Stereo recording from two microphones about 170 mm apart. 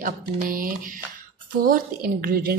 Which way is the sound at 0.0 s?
55° right (ahead or behind).